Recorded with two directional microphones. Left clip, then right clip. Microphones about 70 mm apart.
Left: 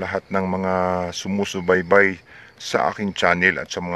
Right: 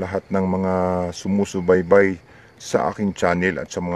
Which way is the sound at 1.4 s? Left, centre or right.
Right.